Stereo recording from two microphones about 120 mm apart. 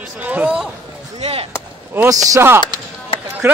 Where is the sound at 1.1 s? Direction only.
60° right (ahead or behind).